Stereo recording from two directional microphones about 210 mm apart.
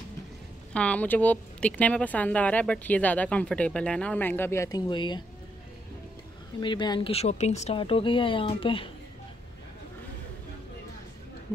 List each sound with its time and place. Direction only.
0.7 s speech: 5° left (ahead or behind); by 5.2 s 20° left (ahead or behind)
6.6 s speech: 20° left (ahead or behind)